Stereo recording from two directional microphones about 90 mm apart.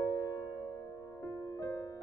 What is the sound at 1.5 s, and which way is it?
Music, 45° left (ahead or behind).